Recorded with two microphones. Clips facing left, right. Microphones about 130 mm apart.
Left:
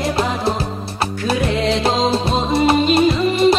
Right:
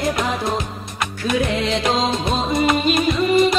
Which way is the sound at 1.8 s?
30° left (ahead or behind).